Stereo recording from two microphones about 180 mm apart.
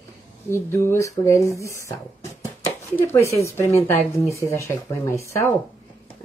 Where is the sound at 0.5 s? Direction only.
15° left (ahead or behind).